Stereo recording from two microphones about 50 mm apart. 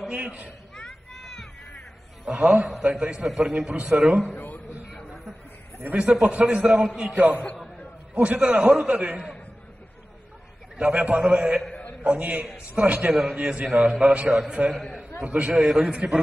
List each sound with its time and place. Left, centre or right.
0.1 s a man's voice: right
0.7 s a sound: centre
2.2 s a man's voice: right
5.9 s a man's voice: right
8.1 s a man's voice: right
10.8 s a man's voice: right
13.1 s a man's voice: centre
13.4 s a man's voice: right